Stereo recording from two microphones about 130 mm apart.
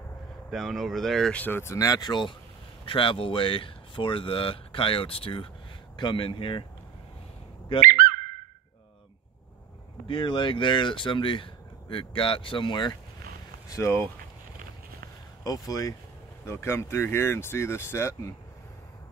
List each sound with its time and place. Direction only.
0.5 s speech: centre (ahead or behind); by 6.6 s 40° left (ahead or behind)
7.9 s a sound: 85° right
10.0 s speech: 40° left (ahead or behind)
13.7 s speech: 20° left (ahead or behind)
15.4 s speech: 25° left (ahead or behind)